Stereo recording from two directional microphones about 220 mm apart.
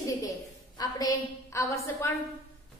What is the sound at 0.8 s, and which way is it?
A woman's voice, 15° left (ahead or behind).